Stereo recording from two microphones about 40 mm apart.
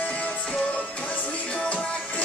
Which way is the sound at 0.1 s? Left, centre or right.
Left.